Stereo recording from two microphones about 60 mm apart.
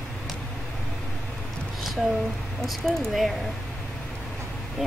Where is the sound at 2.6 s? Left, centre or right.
Centre.